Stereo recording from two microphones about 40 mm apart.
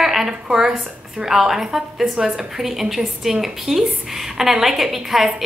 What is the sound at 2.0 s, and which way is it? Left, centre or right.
Speech, right.